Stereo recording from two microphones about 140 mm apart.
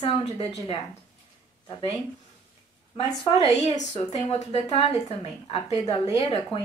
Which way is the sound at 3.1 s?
25° left (ahead or behind).